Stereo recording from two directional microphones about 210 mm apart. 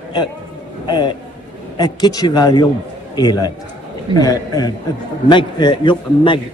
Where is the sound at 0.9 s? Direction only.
20° left (ahead or behind).